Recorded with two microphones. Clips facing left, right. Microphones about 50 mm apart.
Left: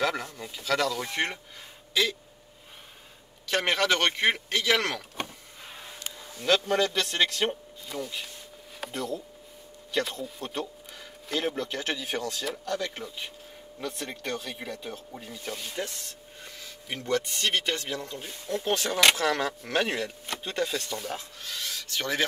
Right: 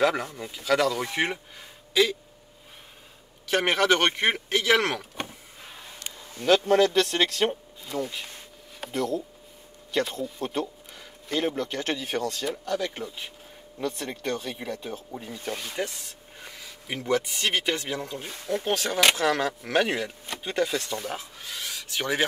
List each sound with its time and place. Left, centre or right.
0.0 s speech: centre
3.4 s speech: centre
5.1 s power windows: centre
6.4 s speech: centre
18.7 s speech: centre
21.0 s speech: centre